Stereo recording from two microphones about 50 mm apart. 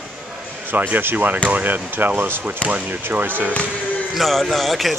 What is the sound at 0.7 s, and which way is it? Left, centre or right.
Speech, right.